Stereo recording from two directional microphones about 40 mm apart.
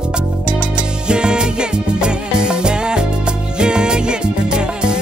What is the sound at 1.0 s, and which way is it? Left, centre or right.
Music, right.